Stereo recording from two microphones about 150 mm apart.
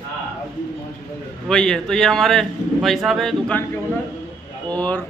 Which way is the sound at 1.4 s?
5° left (ahead or behind).